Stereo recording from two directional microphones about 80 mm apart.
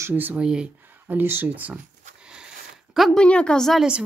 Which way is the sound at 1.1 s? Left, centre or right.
Right.